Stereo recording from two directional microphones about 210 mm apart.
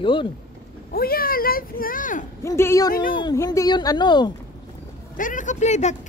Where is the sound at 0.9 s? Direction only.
45° left (ahead or behind).